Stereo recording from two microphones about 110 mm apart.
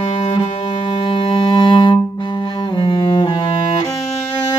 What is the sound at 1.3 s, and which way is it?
Music, 50° left (ahead or behind).